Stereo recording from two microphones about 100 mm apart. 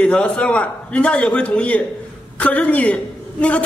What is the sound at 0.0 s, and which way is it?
A man's voice, 10° left (ahead or behind).